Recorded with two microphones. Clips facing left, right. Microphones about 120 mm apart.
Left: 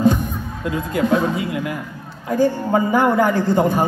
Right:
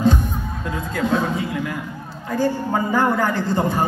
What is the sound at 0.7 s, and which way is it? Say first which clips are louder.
Speech: left 4 dB; 15° left (ahead or behind).